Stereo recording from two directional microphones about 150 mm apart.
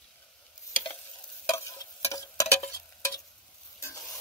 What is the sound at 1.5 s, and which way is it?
Stir, 20° left (ahead or behind).